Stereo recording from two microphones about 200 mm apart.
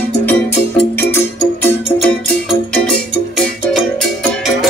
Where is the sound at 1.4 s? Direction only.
10° left (ahead or behind).